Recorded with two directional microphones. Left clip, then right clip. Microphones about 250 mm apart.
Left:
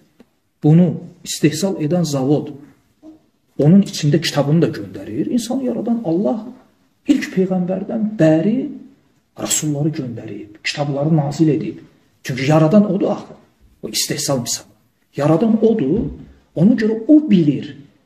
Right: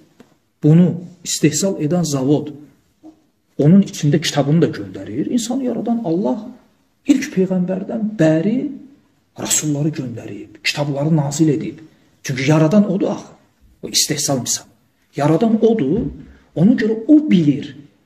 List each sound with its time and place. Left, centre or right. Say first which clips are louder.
0.6 s a man's voice: even; right
3.6 s a man's voice: even; right